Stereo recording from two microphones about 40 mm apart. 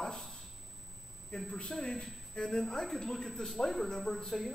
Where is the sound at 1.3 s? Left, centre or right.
Left.